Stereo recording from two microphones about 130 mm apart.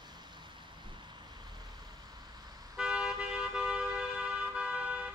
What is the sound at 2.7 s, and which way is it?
Toot, 5° right (ahead or behind).